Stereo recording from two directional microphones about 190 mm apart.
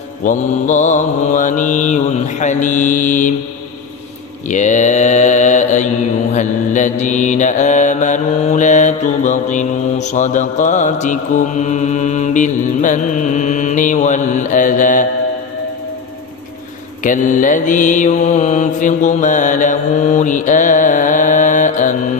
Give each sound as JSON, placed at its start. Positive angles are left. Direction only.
{"t": 0.2, "sound": "mantra", "side_deg": 40}
{"t": 4.5, "sound": "mantra", "side_deg": 40}
{"t": 17.0, "sound": "mantra", "side_deg": 40}